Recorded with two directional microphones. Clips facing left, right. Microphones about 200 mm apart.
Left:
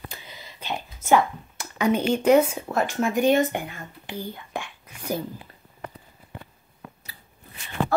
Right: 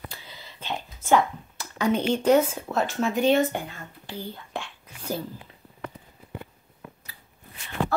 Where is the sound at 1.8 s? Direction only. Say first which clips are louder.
Left 2 dB; 10° left (ahead or behind).